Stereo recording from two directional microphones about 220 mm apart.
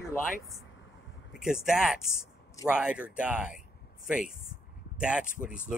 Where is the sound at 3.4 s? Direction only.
35° left (ahead or behind).